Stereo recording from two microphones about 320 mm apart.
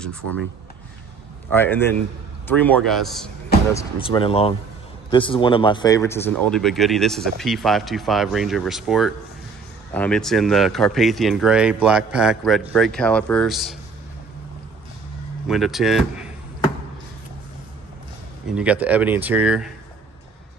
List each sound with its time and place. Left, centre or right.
1.5 s speech: centre
3.7 s speech: centre
15.4 s speech: centre
18.5 s speech: centre